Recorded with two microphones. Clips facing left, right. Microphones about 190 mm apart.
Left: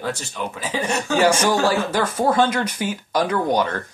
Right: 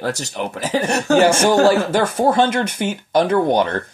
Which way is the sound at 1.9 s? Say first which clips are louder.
Right 3 dB; 25° right (ahead or behind).